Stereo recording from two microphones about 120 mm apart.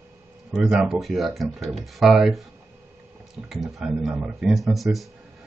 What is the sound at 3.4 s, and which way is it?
Speech, centre (ahead or behind).